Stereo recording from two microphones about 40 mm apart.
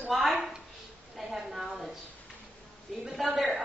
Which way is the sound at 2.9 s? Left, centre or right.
Centre.